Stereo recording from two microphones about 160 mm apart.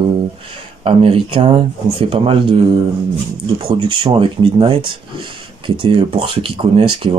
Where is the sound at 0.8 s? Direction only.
35° right (ahead or behind).